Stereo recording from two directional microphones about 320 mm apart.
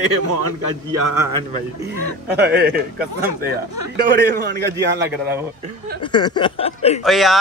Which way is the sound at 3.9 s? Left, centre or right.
Right.